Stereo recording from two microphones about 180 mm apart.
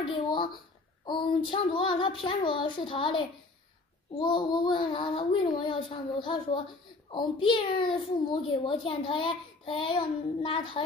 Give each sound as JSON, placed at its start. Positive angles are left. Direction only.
{"t": 1.0, "sound": "a child's voice", "side_deg": 25}